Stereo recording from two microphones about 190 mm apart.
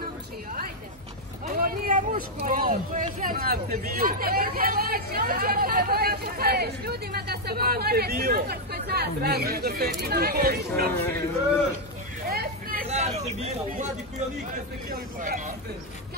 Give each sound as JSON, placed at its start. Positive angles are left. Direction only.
{"t": 1.5, "sound": "speech", "side_deg": -45}
{"t": 10.9, "sound": "speech", "side_deg": 10}
{"t": 12.3, "sound": "hubbub", "side_deg": -50}
{"t": 12.9, "sound": "a sound", "side_deg": -35}
{"t": 15.1, "sound": "speech", "side_deg": -45}